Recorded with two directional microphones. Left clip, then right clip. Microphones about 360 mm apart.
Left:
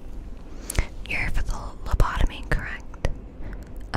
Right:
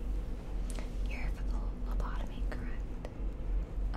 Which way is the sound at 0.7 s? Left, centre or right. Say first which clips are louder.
Left 19 dB; left.